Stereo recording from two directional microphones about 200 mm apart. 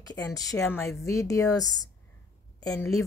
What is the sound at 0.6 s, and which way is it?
Speech, 5° left (ahead or behind).